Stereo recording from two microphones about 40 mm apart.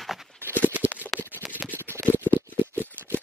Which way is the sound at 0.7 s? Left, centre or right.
Right.